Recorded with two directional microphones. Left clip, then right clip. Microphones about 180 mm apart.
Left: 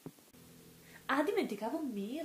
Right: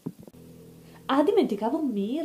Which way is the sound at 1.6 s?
35° left (ahead or behind).